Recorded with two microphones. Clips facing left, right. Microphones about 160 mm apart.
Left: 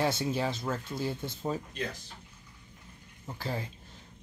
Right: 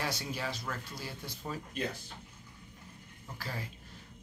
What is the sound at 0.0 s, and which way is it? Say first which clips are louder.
A man's voice: left 8 dB; 25° left (ahead or behind).